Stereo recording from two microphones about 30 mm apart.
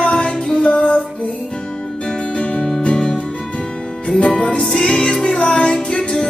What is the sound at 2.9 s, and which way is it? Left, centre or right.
Music, left.